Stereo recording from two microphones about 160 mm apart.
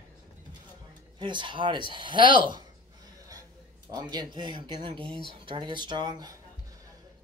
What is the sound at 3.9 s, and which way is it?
Speech, 25° right (ahead or behind).